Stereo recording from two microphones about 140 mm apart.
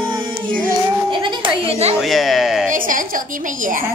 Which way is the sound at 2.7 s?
70° right (ahead or behind).